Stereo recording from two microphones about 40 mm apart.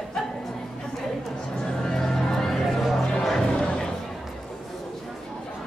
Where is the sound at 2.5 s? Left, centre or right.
Centre.